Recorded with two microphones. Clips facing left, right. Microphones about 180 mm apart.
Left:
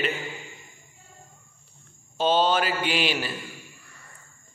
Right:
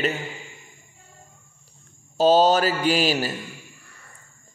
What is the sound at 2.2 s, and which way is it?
A man's voice, 40° right (ahead or behind).